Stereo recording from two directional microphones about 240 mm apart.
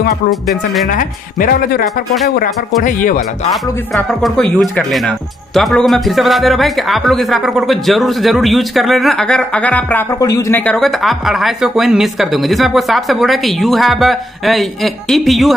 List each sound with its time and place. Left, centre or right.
0.3 s speech: centre
0.8 s speech: left
3.9 s speech: centre